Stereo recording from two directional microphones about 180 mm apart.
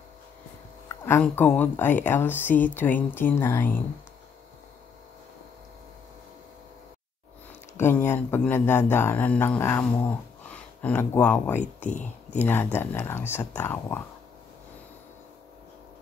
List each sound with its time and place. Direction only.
1.0 s speech: 10° left (ahead or behind)
7.7 s speech: 10° left (ahead or behind)
11.9 s speech: 40° left (ahead or behind)
12.4 s speech: 10° left (ahead or behind)